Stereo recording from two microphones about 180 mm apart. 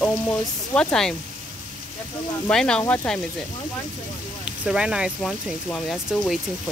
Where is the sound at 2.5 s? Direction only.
5° left (ahead or behind).